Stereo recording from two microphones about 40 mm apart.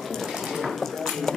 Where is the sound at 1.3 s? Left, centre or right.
Centre.